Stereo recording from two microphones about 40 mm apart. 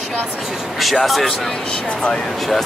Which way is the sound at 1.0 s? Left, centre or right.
Centre.